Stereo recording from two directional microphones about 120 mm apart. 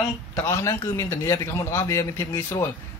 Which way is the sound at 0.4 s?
25° left (ahead or behind).